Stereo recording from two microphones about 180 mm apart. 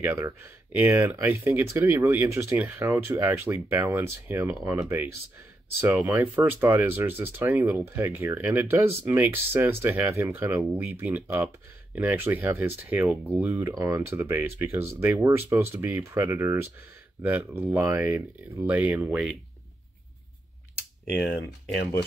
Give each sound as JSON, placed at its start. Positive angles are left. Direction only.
{"t": 0.0, "sound": "speech", "side_deg": -10}
{"t": 21.1, "sound": "speech", "side_deg": 5}